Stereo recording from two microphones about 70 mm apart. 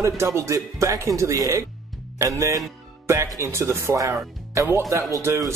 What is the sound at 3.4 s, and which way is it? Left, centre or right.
Speech, right.